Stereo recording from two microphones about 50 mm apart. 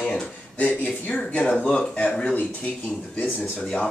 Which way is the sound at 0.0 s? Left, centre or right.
Left.